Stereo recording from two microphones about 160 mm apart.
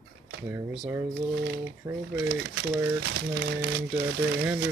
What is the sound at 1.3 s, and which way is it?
Speech, 90° right.